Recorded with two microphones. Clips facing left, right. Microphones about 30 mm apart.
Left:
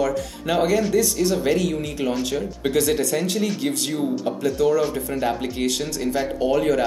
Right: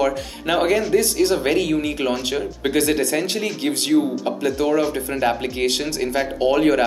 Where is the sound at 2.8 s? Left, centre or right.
Right.